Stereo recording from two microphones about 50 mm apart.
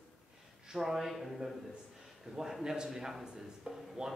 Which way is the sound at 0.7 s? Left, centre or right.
Centre.